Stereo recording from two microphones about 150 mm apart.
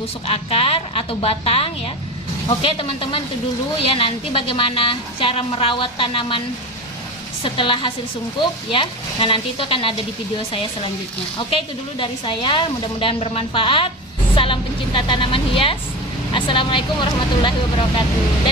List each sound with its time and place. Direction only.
0.3 s a woman's voice: 40° left (ahead or behind)
7.4 s a woman's voice: 35° left (ahead or behind)
11.3 s a woman's voice: 35° left (ahead or behind)